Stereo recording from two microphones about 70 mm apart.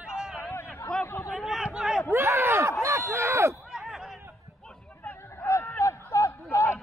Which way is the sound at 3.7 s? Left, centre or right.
Centre.